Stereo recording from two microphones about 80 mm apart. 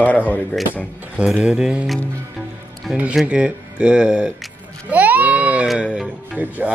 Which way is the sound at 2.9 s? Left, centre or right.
Centre.